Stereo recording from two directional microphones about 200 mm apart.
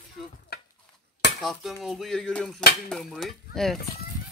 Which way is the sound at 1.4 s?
Centre (ahead or behind).